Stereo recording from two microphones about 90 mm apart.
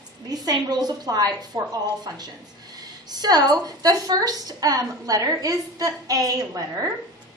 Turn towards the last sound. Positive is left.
turn(degrees=-40)  # may be behind; listen again after turning